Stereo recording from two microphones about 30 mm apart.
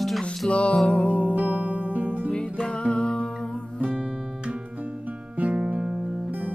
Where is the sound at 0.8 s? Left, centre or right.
Left.